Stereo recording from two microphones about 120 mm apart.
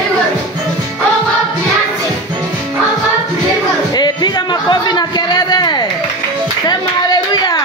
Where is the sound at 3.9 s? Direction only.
35° left (ahead or behind).